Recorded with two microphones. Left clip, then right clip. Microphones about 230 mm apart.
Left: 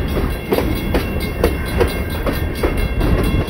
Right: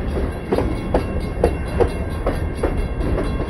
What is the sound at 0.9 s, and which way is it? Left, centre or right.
Train, left.